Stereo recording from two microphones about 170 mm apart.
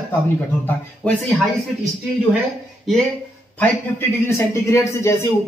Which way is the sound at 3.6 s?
10° left (ahead or behind).